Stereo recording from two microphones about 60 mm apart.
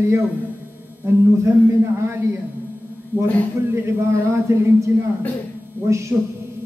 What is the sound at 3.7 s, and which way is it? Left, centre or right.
A man's voice, right.